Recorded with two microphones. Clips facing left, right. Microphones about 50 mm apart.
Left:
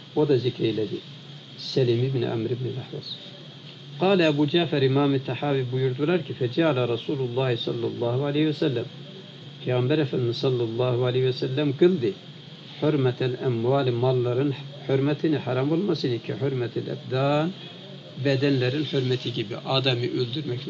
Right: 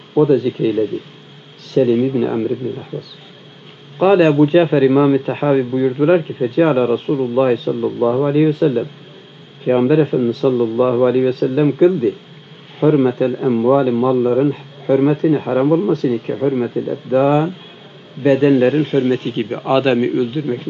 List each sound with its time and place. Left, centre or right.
0.1 s a man's voice: right